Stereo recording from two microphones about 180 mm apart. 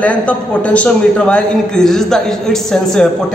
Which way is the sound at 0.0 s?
5° left (ahead or behind).